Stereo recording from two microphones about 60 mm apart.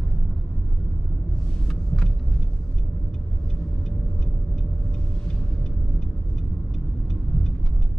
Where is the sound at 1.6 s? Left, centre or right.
Centre.